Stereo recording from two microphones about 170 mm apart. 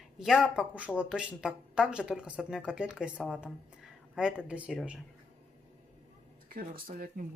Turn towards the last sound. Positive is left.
turn(degrees=-60)  # may be behind; listen again after turning